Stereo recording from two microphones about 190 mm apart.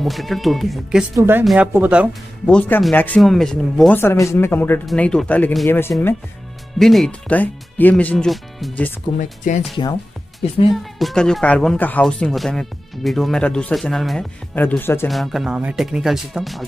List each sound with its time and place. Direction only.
0.0 s speech: centre (ahead or behind)
1.1 s speech: 15° right (ahead or behind)
1.4 s speech: centre (ahead or behind)
2.4 s speech: 10° left (ahead or behind)
4.0 s speech: 15° left (ahead or behind)
6.8 s speech: centre (ahead or behind)
9.2 s speech: 40° left (ahead or behind)
10.7 s speech: centre (ahead or behind)
15.0 s speech: centre (ahead or behind)